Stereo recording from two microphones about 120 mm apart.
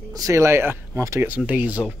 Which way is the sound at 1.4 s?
10° right (ahead or behind).